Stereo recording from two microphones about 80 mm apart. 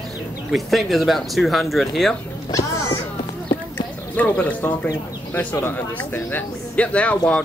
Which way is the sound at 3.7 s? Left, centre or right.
Left.